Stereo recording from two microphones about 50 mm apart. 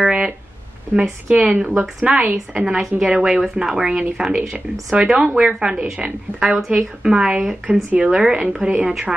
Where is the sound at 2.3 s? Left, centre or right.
Centre.